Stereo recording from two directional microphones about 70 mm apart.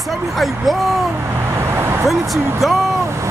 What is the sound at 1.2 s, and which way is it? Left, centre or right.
Vehicle, right.